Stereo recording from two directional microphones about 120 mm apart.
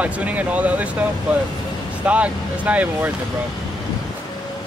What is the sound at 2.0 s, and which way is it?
Speech, 10° right (ahead or behind).